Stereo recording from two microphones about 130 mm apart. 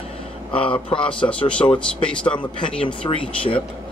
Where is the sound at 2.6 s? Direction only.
40° left (ahead or behind).